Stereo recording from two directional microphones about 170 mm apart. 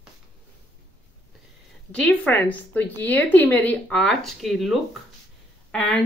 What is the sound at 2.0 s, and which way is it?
A woman's voice, 10° left (ahead or behind).